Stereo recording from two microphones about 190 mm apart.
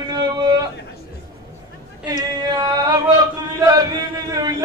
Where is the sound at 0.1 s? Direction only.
20° right (ahead or behind).